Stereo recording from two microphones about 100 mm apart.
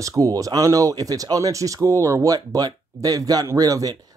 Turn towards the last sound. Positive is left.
turn(degrees=-40)  # may be behind; listen again after turning